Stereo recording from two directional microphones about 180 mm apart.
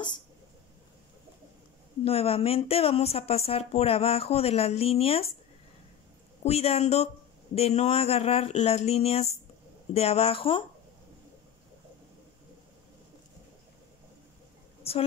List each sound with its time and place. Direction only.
2.0 s speech: 35° left (ahead or behind)
6.4 s speech: 35° left (ahead or behind)
14.8 s a sound: 35° left (ahead or behind)